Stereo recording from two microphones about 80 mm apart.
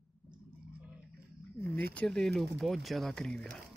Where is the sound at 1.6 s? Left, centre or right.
Left.